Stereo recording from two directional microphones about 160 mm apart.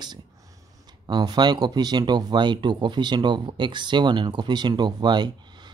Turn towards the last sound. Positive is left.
turn(degrees=-25)  # may be behind; listen again after turning